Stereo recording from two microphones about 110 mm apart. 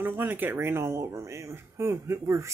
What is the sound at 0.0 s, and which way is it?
Speech, 20° right (ahead or behind).